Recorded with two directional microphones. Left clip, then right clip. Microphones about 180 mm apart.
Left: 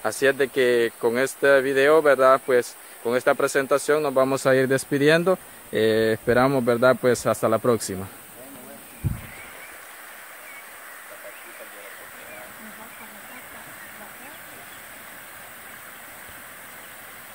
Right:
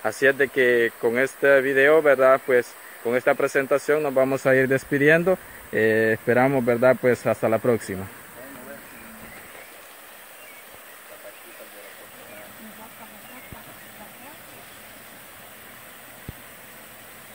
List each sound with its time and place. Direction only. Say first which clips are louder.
0.1 s speech: right 2 dB; 20° left (ahead or behind)